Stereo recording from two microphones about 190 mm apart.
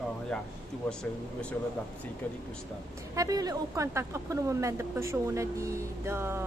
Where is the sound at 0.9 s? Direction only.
5° left (ahead or behind).